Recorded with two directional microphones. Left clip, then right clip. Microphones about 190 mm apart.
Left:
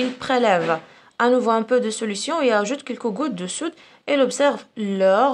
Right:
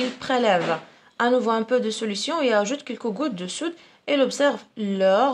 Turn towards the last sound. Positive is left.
turn(degrees=25)  # may be behind; listen again after turning